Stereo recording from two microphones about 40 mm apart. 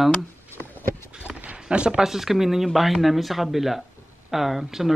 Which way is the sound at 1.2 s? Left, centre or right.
Right.